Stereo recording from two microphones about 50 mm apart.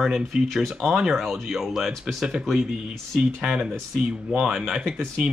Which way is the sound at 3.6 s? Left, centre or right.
Centre.